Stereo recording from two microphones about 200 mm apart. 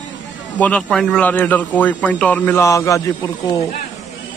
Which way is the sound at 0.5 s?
5° left (ahead or behind).